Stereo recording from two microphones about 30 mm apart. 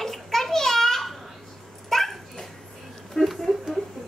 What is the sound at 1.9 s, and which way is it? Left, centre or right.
Dog, centre.